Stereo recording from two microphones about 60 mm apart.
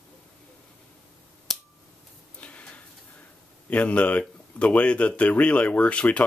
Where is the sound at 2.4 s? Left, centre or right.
Centre.